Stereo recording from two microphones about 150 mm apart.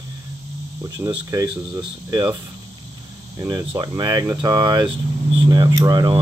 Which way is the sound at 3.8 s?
25° right (ahead or behind).